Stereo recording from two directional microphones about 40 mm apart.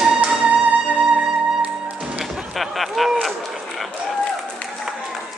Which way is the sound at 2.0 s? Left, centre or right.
Centre.